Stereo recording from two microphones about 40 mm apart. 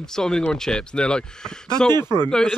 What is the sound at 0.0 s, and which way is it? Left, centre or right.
Speech, centre.